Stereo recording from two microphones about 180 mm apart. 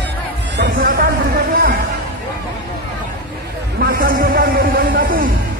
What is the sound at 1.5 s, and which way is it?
Music, 55° right (ahead or behind).